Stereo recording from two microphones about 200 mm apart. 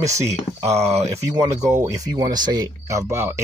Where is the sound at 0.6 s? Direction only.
15° right (ahead or behind).